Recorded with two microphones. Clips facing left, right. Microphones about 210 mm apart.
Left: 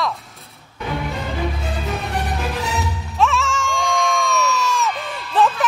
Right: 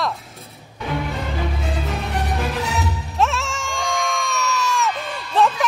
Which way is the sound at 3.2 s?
Centre (ahead or behind).